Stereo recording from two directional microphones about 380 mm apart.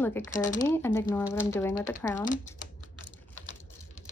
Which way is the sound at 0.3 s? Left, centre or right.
Centre.